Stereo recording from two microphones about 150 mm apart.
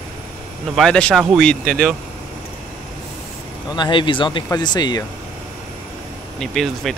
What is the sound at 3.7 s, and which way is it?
Speech, 30° left (ahead or behind).